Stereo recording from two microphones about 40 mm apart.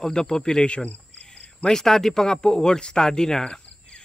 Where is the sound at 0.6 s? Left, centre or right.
Left.